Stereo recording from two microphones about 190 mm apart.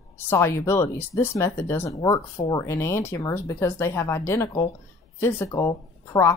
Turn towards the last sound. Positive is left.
turn(degrees=15)  # may be behind; listen again after turning